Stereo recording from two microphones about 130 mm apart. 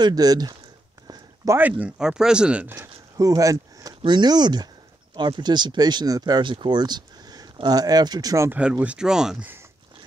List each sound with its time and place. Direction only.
0.0 s speech: 30° right (ahead or behind)
1.0 s a sound: 25° right (ahead or behind)
1.6 s speech: 10° right (ahead or behind)
2.7 s a sound: 25° right (ahead or behind)
4.0 s speech: 35° right (ahead or behind)
8.5 s speech: 10° right (ahead or behind)